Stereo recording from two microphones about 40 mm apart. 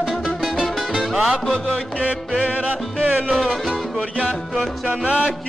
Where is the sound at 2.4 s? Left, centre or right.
Right.